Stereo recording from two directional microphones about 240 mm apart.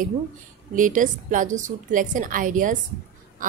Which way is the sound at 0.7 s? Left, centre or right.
Right.